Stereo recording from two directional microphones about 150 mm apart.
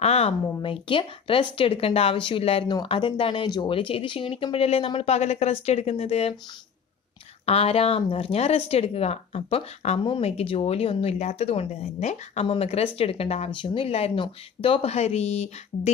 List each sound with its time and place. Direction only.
0.0 s speech: 45° left (ahead or behind)
7.4 s speech: 40° left (ahead or behind)